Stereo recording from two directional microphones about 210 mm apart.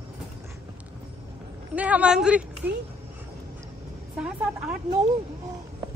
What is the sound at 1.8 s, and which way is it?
Speech, 5° right (ahead or behind).